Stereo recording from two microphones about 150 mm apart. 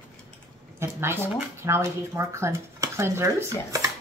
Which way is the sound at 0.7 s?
15° right (ahead or behind).